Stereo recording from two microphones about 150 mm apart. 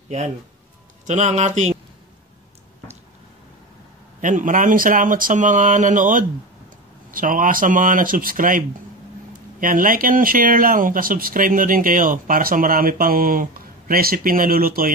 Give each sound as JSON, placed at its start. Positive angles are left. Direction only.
{"t": 1.0, "sound": "speech", "side_deg": -50}
{"t": 4.2, "sound": "speech", "side_deg": -60}